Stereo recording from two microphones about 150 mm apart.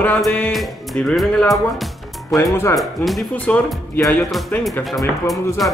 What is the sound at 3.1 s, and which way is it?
Speech, 5° left (ahead or behind).